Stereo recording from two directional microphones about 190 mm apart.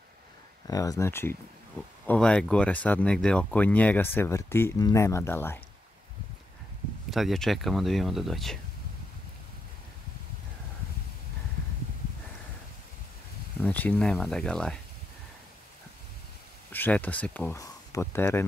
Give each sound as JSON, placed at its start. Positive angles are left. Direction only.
{"t": 0.7, "sound": "speech", "side_deg": 20}
{"t": 7.1, "sound": "speech", "side_deg": 0}
{"t": 13.6, "sound": "speech", "side_deg": 10}
{"t": 16.7, "sound": "speech", "side_deg": 10}